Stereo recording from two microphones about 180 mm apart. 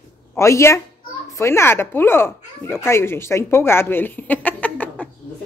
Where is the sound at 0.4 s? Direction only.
15° left (ahead or behind).